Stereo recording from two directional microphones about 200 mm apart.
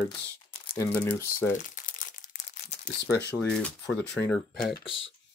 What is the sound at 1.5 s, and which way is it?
Crumpling, 40° left (ahead or behind).